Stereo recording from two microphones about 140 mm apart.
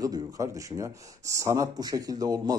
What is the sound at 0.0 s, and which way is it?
Speech, 25° right (ahead or behind).